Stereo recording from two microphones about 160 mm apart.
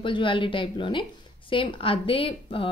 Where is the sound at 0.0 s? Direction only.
30° left (ahead or behind).